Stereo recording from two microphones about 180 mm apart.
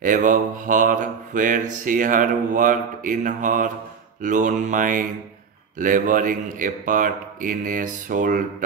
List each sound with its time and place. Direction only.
0.0 s mantra: 45° right (ahead or behind)